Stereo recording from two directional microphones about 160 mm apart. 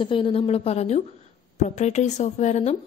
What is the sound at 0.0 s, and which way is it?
A woman's voice, 30° left (ahead or behind).